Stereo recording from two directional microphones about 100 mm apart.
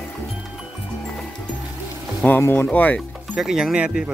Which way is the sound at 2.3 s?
20° left (ahead or behind).